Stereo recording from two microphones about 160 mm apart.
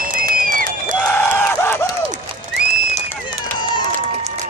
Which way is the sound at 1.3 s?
15° left (ahead or behind).